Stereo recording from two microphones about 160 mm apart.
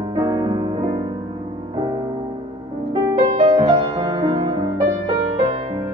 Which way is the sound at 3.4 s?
30° right (ahead or behind).